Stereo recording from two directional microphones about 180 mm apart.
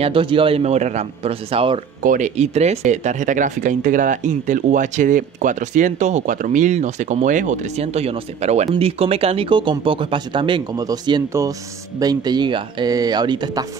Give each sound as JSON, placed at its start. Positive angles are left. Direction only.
{"t": 0.0, "sound": "a man's voice", "side_deg": -30}
{"t": 2.0, "sound": "speech", "side_deg": -45}